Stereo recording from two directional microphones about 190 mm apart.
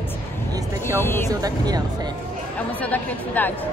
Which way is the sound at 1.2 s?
20° right (ahead or behind).